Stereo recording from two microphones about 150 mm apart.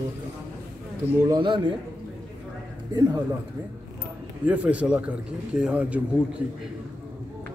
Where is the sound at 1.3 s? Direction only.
30° right (ahead or behind).